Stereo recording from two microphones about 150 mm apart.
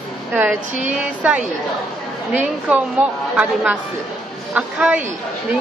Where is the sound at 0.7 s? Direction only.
55° right (ahead or behind).